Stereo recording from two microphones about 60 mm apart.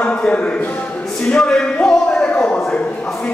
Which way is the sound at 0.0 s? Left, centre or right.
Left.